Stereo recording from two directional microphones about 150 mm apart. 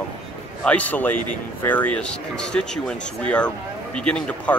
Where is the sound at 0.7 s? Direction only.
10° left (ahead or behind).